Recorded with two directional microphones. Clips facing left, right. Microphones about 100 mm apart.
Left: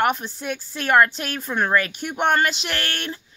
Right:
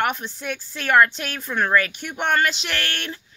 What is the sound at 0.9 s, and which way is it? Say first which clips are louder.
Speech: even; 35° left (ahead or behind).